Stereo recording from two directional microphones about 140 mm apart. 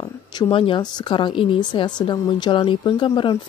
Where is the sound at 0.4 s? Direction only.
35° left (ahead or behind).